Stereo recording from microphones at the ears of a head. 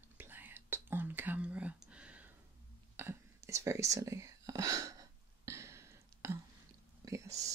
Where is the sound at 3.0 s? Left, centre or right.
Right.